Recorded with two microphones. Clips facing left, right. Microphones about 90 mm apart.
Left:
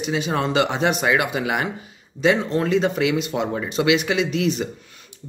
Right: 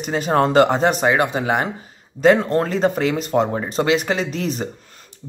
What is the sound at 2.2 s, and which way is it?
Speech, 45° right (ahead or behind).